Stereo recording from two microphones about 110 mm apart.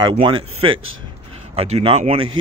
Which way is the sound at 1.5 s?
65° right (ahead or behind).